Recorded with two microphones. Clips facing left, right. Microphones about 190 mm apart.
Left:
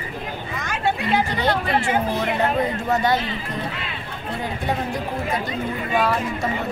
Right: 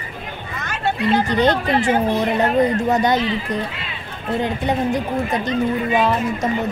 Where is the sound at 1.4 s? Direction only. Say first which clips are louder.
Right 4 dB; 20° right (ahead or behind).